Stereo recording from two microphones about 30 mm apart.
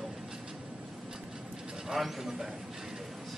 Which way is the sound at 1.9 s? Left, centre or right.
Centre.